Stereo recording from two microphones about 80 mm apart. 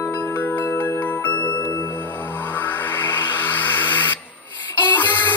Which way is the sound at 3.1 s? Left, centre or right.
Left.